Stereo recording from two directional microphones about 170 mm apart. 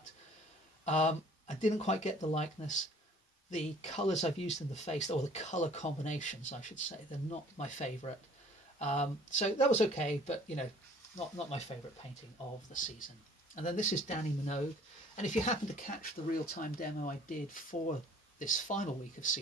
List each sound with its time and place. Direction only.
0.8 s speech: 40° left (ahead or behind)
13.6 s speech: 45° left (ahead or behind)